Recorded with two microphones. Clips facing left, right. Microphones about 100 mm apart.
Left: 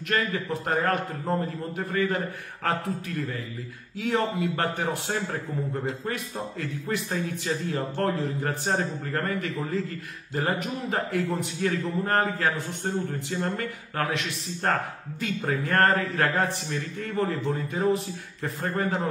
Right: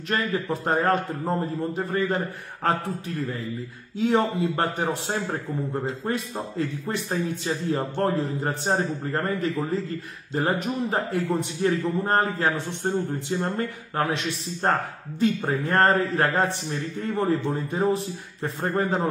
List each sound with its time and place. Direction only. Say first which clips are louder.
0.1 s a man's voice: right 2 dB; 30° right (ahead or behind)
4.0 s a man's voice: right 4 dB; 30° right (ahead or behind)